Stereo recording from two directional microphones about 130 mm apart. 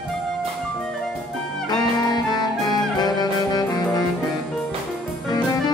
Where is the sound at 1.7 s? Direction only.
30° left (ahead or behind).